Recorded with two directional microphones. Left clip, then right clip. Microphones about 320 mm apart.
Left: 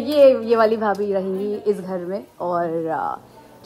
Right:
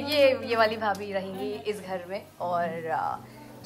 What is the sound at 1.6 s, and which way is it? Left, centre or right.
A woman's voice, left.